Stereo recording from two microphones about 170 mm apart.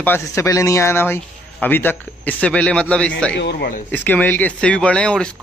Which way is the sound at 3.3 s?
75° left (ahead or behind).